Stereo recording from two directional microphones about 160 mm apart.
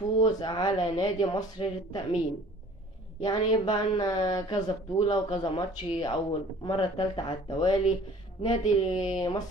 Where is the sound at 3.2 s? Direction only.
30° left (ahead or behind).